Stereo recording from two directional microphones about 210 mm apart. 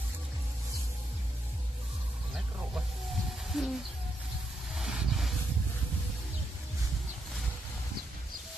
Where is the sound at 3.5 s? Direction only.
5° right (ahead or behind).